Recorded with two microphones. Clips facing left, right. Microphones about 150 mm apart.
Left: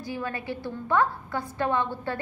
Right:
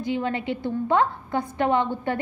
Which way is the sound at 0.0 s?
20° right (ahead or behind).